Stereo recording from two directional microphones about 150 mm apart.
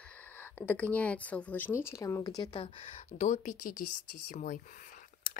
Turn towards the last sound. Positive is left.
turn(degrees=65)  # may be behind; listen again after turning